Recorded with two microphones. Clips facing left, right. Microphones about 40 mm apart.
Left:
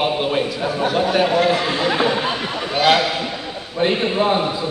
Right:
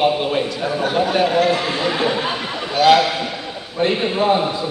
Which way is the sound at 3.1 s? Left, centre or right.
Centre.